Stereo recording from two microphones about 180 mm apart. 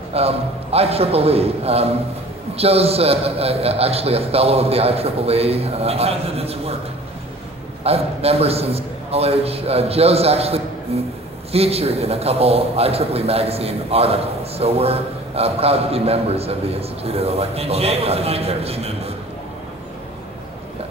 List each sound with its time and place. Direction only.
0.1 s a man's voice: 35° right (ahead or behind)
7.8 s a man's voice: 35° right (ahead or behind)